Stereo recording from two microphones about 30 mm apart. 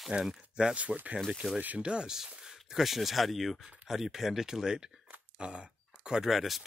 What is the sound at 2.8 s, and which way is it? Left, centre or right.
Speech, centre.